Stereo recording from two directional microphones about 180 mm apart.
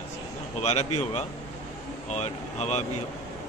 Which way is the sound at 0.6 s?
35° left (ahead or behind).